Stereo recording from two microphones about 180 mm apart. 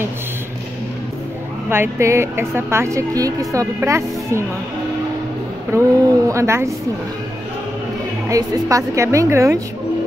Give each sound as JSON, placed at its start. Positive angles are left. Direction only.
{"t": 1.7, "sound": "speech", "side_deg": -15}
{"t": 5.7, "sound": "speech", "side_deg": -15}
{"t": 8.3, "sound": "speech", "side_deg": -20}